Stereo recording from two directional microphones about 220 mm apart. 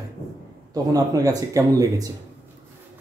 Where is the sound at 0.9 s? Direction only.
15° right (ahead or behind).